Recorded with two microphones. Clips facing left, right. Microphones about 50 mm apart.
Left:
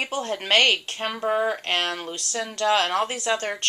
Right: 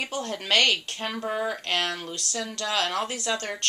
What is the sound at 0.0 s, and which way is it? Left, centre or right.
Speech, left.